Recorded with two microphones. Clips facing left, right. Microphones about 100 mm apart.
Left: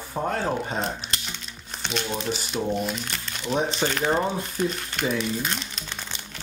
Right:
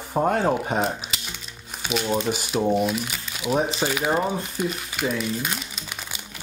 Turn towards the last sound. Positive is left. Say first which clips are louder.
# even
turn(degrees=-5)  # may be behind; listen again after turning